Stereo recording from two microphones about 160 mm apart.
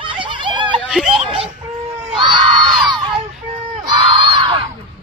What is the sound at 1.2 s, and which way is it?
Music, 35° right (ahead or behind).